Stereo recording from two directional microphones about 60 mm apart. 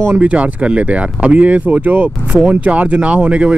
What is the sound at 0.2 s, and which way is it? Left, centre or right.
Speech, right.